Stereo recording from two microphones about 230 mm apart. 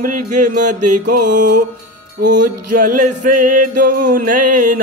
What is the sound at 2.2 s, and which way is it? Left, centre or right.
Music, right.